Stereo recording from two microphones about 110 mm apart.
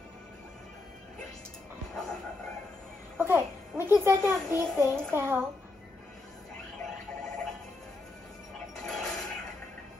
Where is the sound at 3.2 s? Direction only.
20° right (ahead or behind).